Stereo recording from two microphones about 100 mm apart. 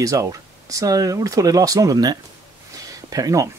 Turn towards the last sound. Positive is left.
turn(degrees=-35)  # may be behind; listen again after turning